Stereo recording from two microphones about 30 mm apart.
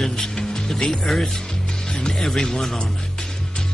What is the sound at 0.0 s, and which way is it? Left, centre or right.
Music, centre.